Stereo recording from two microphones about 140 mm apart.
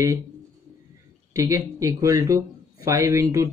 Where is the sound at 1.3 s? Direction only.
20° right (ahead or behind).